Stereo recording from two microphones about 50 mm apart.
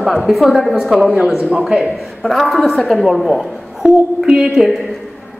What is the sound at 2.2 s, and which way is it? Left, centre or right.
A woman's voice, centre.